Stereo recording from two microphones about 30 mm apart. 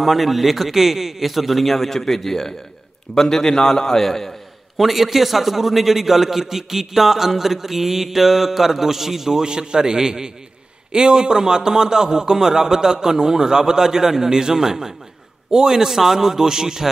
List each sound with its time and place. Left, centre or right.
0.0 s a man's voice: centre
4.7 s a man's voice: centre
9.4 s a man's voice: right